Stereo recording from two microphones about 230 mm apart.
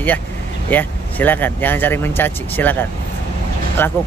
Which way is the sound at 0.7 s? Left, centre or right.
Centre.